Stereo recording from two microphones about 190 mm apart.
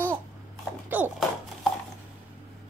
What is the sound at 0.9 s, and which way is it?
Speech, 10° right (ahead or behind).